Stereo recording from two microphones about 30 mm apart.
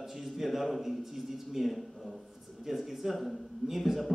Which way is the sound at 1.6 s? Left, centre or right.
Centre.